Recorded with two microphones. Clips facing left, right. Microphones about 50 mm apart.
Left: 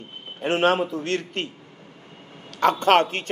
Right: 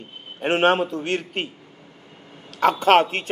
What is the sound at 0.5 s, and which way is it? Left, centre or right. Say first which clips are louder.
Speech: right 2 dB; right.